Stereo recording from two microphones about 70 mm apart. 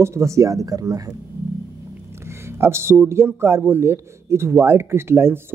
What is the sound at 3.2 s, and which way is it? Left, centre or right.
Speech, right.